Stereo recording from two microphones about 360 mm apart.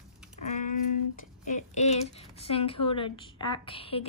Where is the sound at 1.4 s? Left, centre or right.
Centre.